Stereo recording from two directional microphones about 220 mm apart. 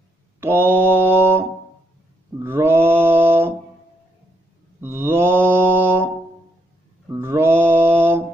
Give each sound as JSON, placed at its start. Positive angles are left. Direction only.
{"t": 0.4, "sound": "mantra", "side_deg": -10}
{"t": 4.7, "sound": "mantra", "side_deg": -10}
{"t": 7.1, "sound": "mantra", "side_deg": -10}